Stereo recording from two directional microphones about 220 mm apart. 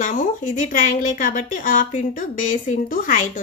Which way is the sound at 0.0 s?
35° left (ahead or behind).